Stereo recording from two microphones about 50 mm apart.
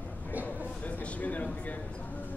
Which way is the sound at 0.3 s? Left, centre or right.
Right.